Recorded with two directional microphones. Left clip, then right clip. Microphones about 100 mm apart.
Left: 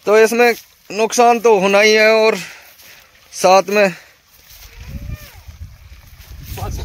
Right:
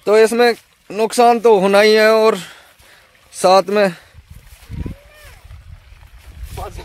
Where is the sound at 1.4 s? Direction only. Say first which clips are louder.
Even; 35° right (ahead or behind); by 4.0 s 20° right (ahead or behind).